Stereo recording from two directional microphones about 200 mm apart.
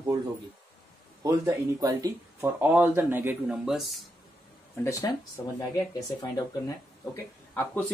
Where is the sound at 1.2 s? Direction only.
15° right (ahead or behind); by 4.0 s centre (ahead or behind).